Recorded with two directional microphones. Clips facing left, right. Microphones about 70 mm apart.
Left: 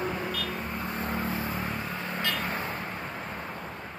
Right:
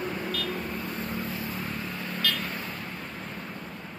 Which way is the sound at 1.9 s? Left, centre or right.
Centre.